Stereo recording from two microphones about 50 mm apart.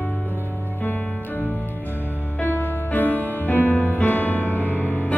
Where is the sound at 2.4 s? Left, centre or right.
Left.